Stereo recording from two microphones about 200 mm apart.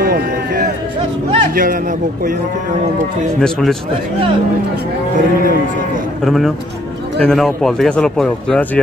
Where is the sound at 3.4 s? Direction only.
Centre (ahead or behind).